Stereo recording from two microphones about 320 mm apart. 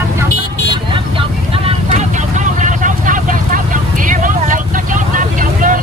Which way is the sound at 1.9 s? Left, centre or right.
Right.